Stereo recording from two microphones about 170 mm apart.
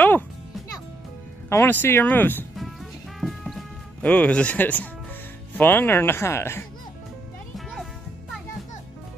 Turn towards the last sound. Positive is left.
turn(degrees=0)  # may be behind; listen again after turning